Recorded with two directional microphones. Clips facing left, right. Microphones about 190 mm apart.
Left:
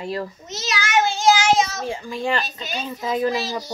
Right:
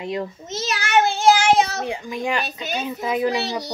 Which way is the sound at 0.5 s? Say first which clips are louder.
Right 2 dB; 55° right (ahead or behind).